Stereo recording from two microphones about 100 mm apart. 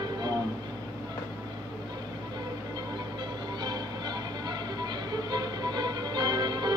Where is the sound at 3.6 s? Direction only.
45° right (ahead or behind).